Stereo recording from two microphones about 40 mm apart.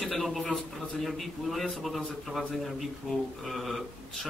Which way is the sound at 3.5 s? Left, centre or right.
Centre.